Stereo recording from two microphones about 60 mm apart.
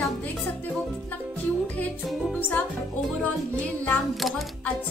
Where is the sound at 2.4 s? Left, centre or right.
Left.